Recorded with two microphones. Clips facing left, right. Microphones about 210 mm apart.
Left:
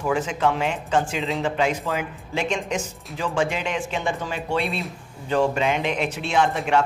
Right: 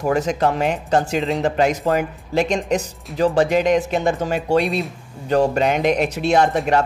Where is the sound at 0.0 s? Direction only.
40° right (ahead or behind).